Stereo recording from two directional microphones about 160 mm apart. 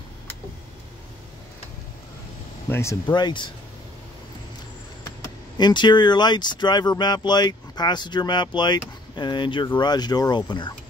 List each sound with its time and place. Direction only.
2.7 s speech: 20° left (ahead or behind)
5.6 s speech: 30° left (ahead or behind)